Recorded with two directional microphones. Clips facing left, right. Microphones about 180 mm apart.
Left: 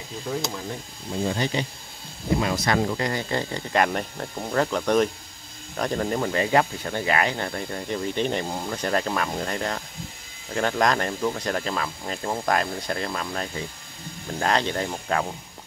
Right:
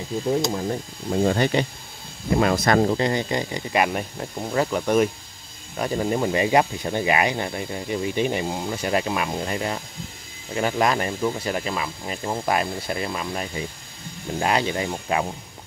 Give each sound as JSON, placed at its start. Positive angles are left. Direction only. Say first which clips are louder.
{"t": 0.7, "sound": "speech", "louder": "right 7 dB", "side_deg": -55}
{"t": 2.8, "sound": "speech", "louder": "right 5 dB", "side_deg": -25}